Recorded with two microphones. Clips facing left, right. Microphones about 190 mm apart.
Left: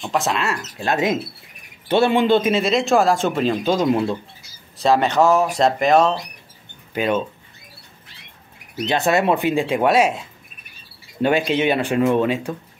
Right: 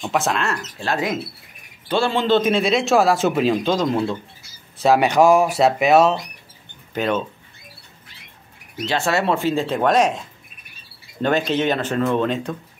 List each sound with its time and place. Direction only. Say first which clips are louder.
0.0 s speech: even; centre (ahead or behind)
0.8 s speech: left 3 dB; 20° left (ahead or behind); by 3.5 s 5° right (ahead or behind)
3.6 s speech: left 1 dB; 10° left (ahead or behind)
4.7 s speech: right 1 dB; 5° right (ahead or behind)
6.9 s speech: left 1 dB; 10° left (ahead or behind)
8.8 s speech: left 2 dB; 20° left (ahead or behind)
11.1 s speech: left 1 dB; 10° left (ahead or behind)